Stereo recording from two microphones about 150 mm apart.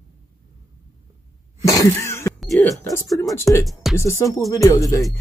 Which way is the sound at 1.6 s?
20° left (ahead or behind).